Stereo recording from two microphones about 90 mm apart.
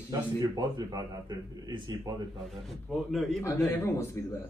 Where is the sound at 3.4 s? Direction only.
30° left (ahead or behind).